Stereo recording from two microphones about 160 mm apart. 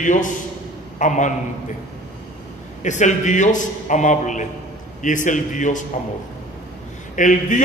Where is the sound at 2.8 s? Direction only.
50° left (ahead or behind).